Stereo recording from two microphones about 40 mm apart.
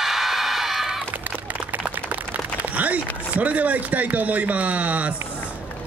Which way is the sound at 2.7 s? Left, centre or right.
Right.